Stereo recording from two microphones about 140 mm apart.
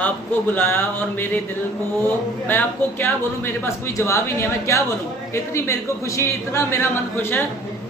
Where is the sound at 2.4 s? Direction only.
15° left (ahead or behind).